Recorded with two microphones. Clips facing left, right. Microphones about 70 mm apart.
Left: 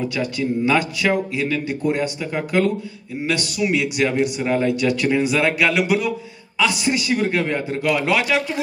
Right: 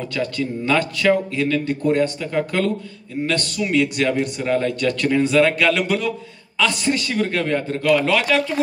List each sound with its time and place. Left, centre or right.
0.0 s a man's voice: centre